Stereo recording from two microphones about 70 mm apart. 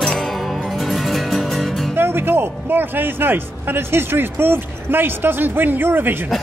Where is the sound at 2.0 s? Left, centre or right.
Right.